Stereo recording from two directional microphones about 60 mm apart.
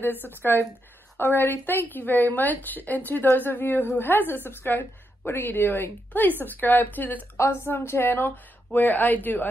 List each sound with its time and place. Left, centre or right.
0.0 s a woman's voice: left
7.3 s a woman's voice: left